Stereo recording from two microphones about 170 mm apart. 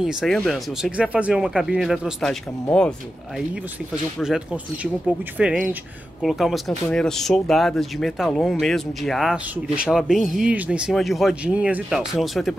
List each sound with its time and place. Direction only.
0.0 s speech: centre (ahead or behind)
3.9 s speech: 5° right (ahead or behind)
5.4 s speech: 5° right (ahead or behind)